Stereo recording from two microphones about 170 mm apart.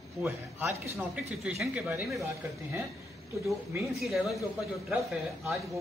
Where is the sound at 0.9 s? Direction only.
5° right (ahead or behind).